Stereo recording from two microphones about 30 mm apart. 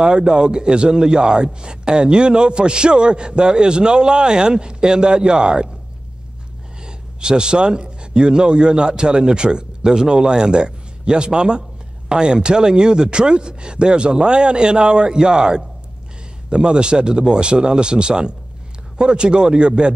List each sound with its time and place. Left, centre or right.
0.0 s a man's voice: right
6.8 s a man's voice: right